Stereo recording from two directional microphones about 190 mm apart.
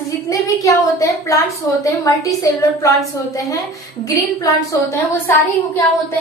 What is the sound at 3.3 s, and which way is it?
A woman's voice, 15° left (ahead or behind).